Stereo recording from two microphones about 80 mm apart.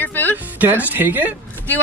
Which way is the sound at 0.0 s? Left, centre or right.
Left.